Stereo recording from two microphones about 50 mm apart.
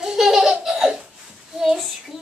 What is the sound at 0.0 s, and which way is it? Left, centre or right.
Laughter, centre.